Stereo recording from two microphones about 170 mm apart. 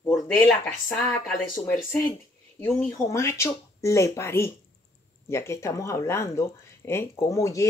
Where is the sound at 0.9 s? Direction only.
5° left (ahead or behind).